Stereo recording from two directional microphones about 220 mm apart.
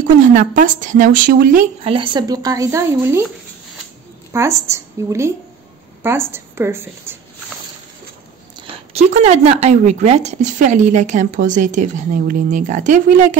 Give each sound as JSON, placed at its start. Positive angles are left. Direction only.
{"t": 0.3, "sound": "speech", "side_deg": -35}
{"t": 1.9, "sound": "a woman's voice", "side_deg": -20}
{"t": 4.3, "sound": "a woman's voice", "side_deg": -15}
{"t": 6.3, "sound": "a woman's voice", "side_deg": -10}
{"t": 8.5, "sound": "speech", "side_deg": -25}